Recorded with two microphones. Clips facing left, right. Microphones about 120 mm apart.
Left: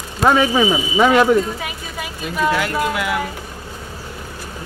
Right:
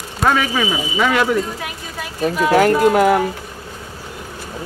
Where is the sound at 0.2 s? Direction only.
20° left (ahead or behind).